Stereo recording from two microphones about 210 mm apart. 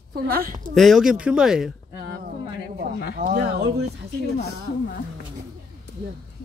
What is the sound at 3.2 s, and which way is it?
Speech, 45° right (ahead or behind).